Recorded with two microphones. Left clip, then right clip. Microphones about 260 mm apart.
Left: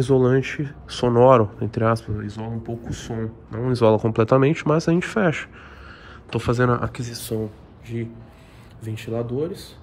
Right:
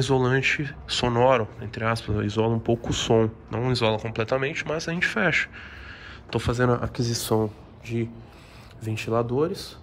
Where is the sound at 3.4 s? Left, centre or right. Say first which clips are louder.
Left 1 dB; centre.